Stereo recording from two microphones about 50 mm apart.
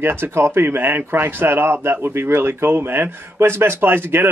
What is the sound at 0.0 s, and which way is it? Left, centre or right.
Speech, right.